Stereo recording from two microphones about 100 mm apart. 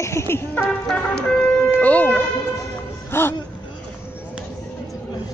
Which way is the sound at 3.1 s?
25° left (ahead or behind).